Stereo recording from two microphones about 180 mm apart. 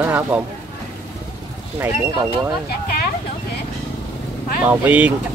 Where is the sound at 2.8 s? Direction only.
60° left (ahead or behind).